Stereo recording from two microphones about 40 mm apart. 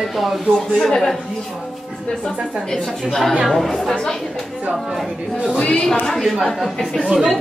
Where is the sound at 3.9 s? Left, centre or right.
Centre.